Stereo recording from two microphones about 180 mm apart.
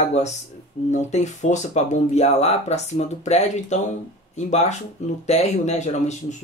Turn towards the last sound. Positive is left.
turn(degrees=40)  # may be behind; listen again after turning